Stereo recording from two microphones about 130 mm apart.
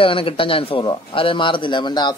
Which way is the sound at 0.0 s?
45° left (ahead or behind).